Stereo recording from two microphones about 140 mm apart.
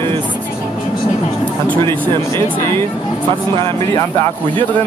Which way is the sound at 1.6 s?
15° left (ahead or behind).